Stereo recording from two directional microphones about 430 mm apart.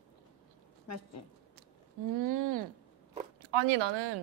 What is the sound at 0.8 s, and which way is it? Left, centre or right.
Speech, left.